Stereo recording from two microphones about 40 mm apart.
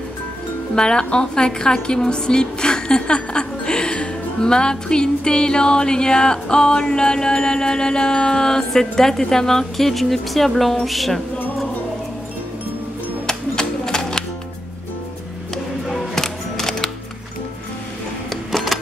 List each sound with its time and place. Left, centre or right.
0.7 s a woman's voice: left
6.9 s music: centre
13.3 s music: centre
15.5 s music: centre
18.3 s music: centre